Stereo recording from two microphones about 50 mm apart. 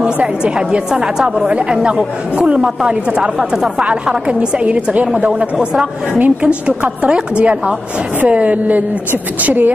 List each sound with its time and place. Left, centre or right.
0.0 s a woman's voice: right
1.5 s a woman's voice: centre; by 9.7 s right